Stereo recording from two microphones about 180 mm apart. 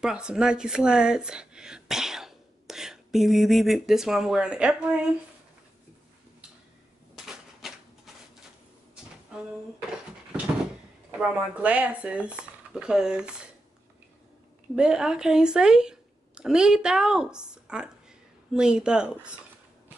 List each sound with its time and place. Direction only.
0.0 s a woman's voice: 5° right (ahead or behind)
7.2 s typewriter: centre (ahead or behind)
9.3 s a sound: 5° right (ahead or behind)
11.1 s speech: 5° right (ahead or behind)
14.8 s speech: 5° right (ahead or behind)